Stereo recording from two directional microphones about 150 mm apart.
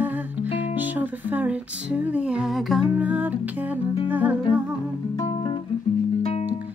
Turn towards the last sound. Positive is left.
turn(degrees=45)  # may be behind; listen again after turning